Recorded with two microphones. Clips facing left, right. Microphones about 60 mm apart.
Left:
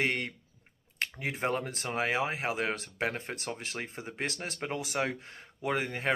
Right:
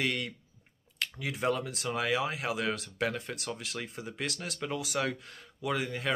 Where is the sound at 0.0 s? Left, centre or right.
Left.